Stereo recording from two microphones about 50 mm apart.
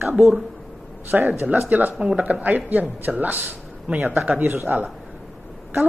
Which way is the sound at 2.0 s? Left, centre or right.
Centre.